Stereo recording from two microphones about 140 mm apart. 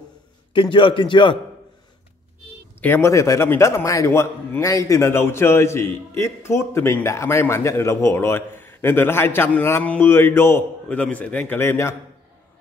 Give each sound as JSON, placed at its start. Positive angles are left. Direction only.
{"t": 0.5, "sound": "a man's voice", "side_deg": 35}
{"t": 2.8, "sound": "a man's voice", "side_deg": 15}